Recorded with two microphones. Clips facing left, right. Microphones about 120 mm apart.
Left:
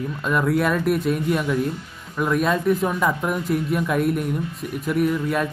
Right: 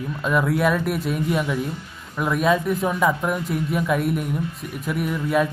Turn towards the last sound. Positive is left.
turn(degrees=0)  # may be behind; listen again after turning